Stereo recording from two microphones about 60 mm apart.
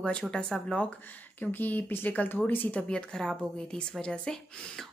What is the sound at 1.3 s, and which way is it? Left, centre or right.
Speech, left.